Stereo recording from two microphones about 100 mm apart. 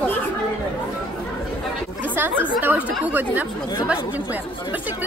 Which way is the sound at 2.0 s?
20° right (ahead or behind).